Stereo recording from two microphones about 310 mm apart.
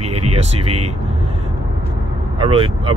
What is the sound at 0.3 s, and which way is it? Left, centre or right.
Speech, centre.